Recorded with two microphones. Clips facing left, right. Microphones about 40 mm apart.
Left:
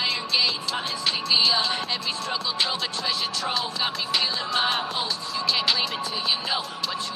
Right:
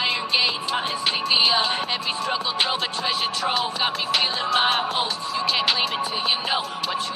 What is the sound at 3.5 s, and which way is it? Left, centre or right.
Music, right.